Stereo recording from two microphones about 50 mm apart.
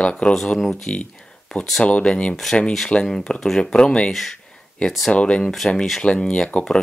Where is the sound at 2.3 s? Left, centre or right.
Centre.